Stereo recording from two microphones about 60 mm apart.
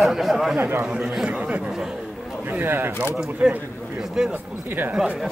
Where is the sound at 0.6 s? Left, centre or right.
Right.